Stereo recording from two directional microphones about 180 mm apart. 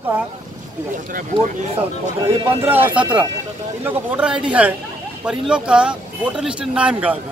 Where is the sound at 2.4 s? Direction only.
10° right (ahead or behind).